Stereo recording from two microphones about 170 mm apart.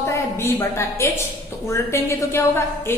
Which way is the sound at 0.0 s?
15° left (ahead or behind).